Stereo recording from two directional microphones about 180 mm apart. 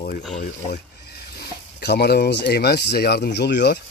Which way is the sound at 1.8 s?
65° left (ahead or behind).